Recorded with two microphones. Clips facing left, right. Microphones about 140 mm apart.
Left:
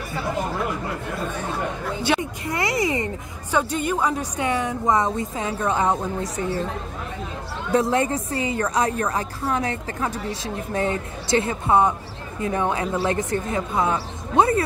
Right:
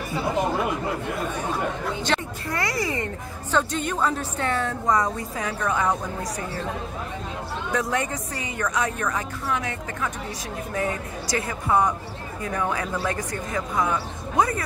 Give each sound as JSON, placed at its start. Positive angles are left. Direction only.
{"t": 2.0, "sound": "a woman's voice", "side_deg": 15}
{"t": 7.7, "sound": "a woman's voice", "side_deg": 30}